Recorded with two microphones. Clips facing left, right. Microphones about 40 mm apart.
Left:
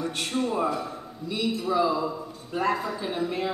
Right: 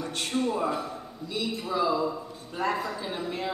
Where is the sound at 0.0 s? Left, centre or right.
Centre.